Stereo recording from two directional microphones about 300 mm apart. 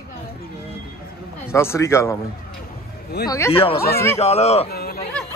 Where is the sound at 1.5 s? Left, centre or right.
Centre.